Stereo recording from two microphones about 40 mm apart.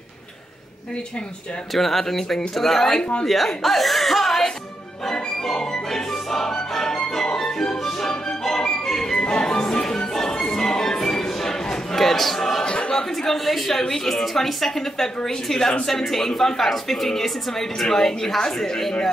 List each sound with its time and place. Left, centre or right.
1.7 s speech: centre
5.0 s music: centre
12.6 s a sound: left
12.9 s speech: centre